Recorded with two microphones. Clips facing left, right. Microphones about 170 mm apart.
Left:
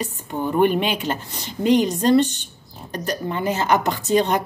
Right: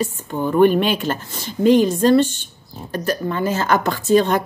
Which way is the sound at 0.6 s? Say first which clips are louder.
Right 4 dB; 15° left (ahead or behind).